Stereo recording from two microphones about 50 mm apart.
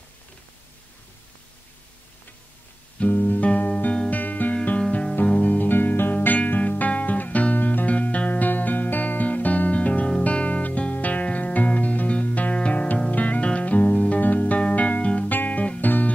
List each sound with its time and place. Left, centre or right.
3.0 s music: left
6.1 s music: left